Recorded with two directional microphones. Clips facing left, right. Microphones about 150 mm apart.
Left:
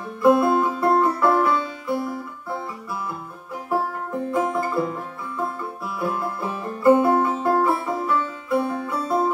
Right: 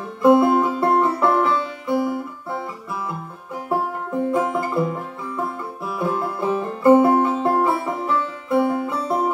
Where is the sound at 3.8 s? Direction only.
20° right (ahead or behind).